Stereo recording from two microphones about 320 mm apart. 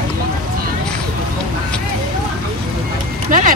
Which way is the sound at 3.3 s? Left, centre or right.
Right.